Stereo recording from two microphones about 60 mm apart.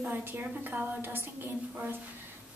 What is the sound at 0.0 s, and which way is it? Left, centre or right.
A woman's voice, right.